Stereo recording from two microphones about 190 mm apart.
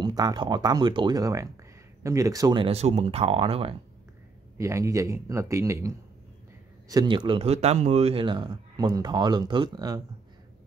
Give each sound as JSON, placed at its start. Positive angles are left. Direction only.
{"t": 0.0, "sound": "speech", "side_deg": -20}
{"t": 4.6, "sound": "speech", "side_deg": -15}